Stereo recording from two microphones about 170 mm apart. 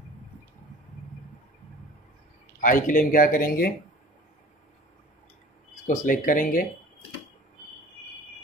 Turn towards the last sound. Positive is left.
turn(degrees=50)  # may be behind; listen again after turning